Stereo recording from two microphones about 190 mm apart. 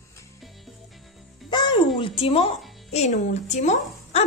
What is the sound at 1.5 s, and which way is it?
Music, 25° left (ahead or behind).